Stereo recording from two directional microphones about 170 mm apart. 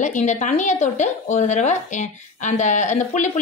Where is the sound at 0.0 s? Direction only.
45° left (ahead or behind).